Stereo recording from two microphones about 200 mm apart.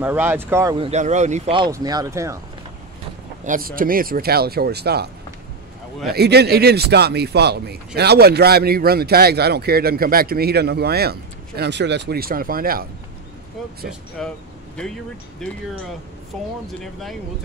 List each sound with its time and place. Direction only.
0.0 s speech: 10° right (ahead or behind)
0.7 s speech: 35° right (ahead or behind)
1.7 s speech: 20° right (ahead or behind)
3.4 s a man's voice: 45° right (ahead or behind)
6.0 s a man's voice: 55° right (ahead or behind)
14.2 s speech: centre (ahead or behind)
15.4 s speech: centre (ahead or behind)
16.8 s speech: centre (ahead or behind)